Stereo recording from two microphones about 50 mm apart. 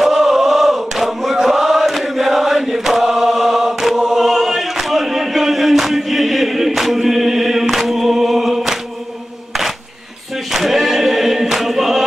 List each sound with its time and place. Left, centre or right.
0.0 s chant: centre
10.5 s choir: centre